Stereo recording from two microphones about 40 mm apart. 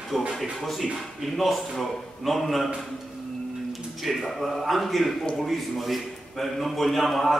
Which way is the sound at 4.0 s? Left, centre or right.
Centre.